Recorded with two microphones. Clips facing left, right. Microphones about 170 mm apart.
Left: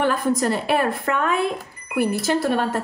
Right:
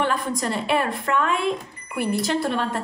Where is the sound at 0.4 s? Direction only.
50° left (ahead or behind).